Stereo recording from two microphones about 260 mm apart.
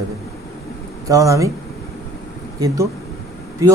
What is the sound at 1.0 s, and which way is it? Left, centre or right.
Speech, centre.